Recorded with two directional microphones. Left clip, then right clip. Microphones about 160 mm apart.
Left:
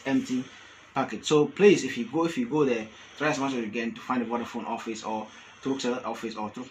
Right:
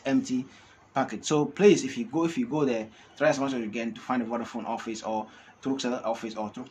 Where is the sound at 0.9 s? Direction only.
10° right (ahead or behind).